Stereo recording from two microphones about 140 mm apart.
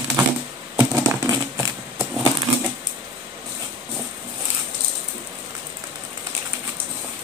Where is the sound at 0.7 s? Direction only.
25° right (ahead or behind).